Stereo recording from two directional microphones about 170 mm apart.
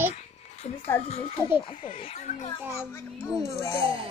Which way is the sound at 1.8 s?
45° left (ahead or behind).